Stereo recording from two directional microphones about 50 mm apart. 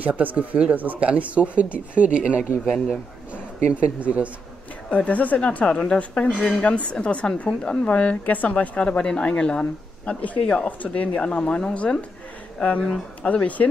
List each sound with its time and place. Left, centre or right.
0.0 s speech: right
4.0 s speech: right
4.9 s speech: left
8.8 s speech: centre
12.8 s speech: centre
13.3 s speech: left